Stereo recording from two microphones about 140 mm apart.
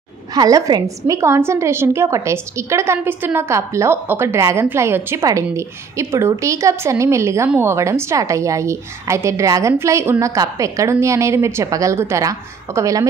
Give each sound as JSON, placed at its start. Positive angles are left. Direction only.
{"t": 0.3, "sound": "a woman's voice", "side_deg": -25}